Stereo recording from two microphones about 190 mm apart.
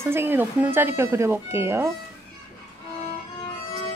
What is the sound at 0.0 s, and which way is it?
Speech, 10° right (ahead or behind).